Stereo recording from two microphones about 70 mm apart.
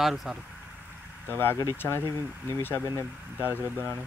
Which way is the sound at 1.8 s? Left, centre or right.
Left.